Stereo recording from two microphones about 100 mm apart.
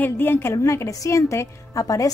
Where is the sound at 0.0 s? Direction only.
20° left (ahead or behind).